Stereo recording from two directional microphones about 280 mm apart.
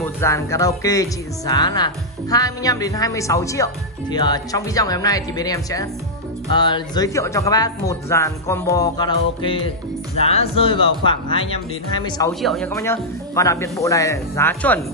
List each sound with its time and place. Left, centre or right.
0.0 s speech: centre
10.1 s music: left
11.1 s speech: centre
12.4 s speech: centre